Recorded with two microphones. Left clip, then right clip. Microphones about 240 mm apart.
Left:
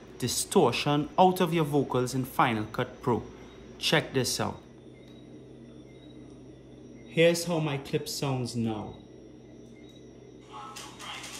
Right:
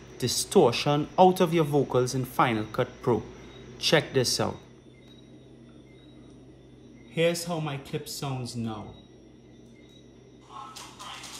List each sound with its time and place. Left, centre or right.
0.2 s speech: centre
7.4 s speech: centre
7.8 s speech: right
8.4 s speech: centre
10.7 s music: centre